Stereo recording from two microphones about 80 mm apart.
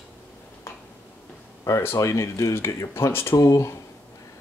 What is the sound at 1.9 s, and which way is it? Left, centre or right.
Speech, left.